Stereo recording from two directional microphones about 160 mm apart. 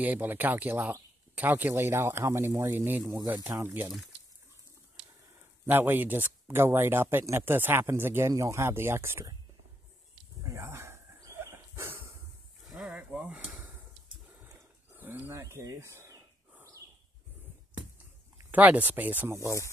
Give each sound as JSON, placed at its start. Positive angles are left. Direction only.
{"t": 0.0, "sound": "speech", "side_deg": -10}
{"t": 5.7, "sound": "speech", "side_deg": -10}
{"t": 10.4, "sound": "a sound", "side_deg": -20}
{"t": 12.6, "sound": "snake", "side_deg": -5}
{"t": 15.0, "sound": "cricket", "side_deg": -10}
{"t": 16.5, "sound": "a sound", "side_deg": -20}
{"t": 18.5, "sound": "speech", "side_deg": -10}